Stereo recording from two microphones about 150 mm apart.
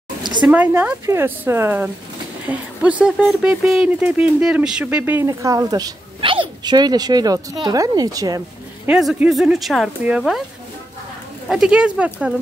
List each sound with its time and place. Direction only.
0.2 s a sound: 30° right (ahead or behind)
0.5 s speech: 10° right (ahead or behind)
8.8 s speech: 10° right (ahead or behind)
11.4 s speech: 5° right (ahead or behind)